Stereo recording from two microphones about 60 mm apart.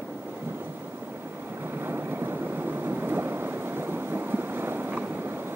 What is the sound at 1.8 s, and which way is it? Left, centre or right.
Boat, right.